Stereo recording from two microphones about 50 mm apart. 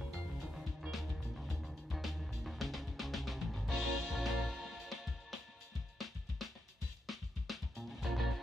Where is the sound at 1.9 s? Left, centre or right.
Centre.